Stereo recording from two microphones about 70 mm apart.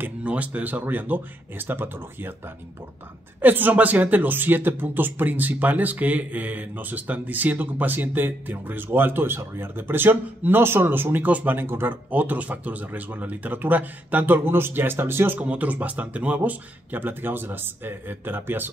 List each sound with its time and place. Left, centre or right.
0.0 s speech: right
15.4 s speech: right